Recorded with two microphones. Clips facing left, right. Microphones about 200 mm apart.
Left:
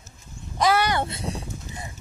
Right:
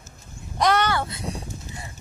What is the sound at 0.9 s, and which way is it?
Speech, 25° left (ahead or behind).